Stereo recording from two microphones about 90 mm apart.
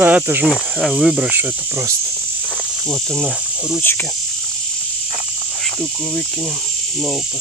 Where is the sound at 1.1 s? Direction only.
15° right (ahead or behind).